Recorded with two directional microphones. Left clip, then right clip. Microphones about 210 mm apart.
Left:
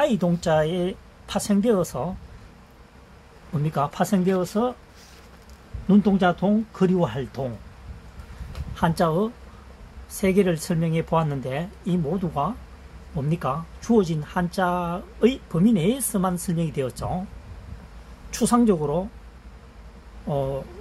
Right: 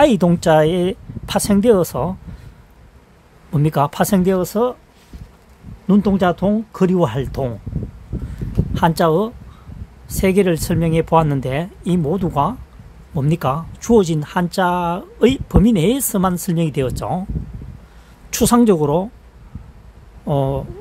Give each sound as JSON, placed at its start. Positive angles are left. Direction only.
{"t": 0.0, "sound": "speech", "side_deg": -50}
{"t": 3.5, "sound": "speech", "side_deg": -60}
{"t": 5.9, "sound": "speech", "side_deg": -60}
{"t": 8.7, "sound": "speech", "side_deg": -55}
{"t": 18.3, "sound": "speech", "side_deg": -55}
{"t": 20.2, "sound": "speech", "side_deg": -55}